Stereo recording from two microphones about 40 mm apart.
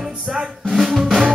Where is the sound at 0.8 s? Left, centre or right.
Centre.